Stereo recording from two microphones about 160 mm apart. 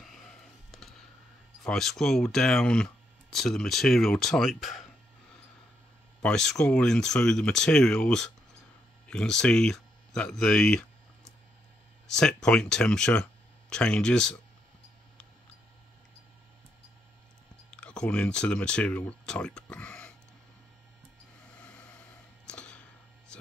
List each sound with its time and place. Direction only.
0.0 s a sound: centre (ahead or behind)
1.6 s speech: centre (ahead or behind)
6.2 s speech: 5° left (ahead or behind)
17.7 s speech: 5° left (ahead or behind)
21.5 s vehicle: 5° left (ahead or behind)
22.5 s clicking: 5° left (ahead or behind)
23.3 s a sound: 5° left (ahead or behind)